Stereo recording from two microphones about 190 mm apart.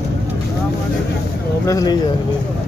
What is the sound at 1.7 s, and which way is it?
Speech, 20° left (ahead or behind).